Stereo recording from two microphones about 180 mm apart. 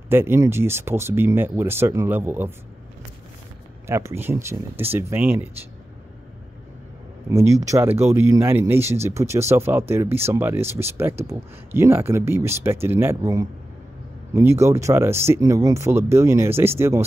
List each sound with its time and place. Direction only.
0.1 s speech: 15° right (ahead or behind)
3.8 s speech: 15° right (ahead or behind)
7.2 s speech: 15° right (ahead or behind)